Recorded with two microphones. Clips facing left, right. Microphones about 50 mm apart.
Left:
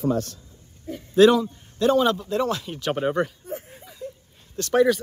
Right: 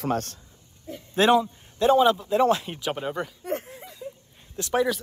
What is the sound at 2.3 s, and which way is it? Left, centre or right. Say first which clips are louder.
Speech: right 4 dB; right.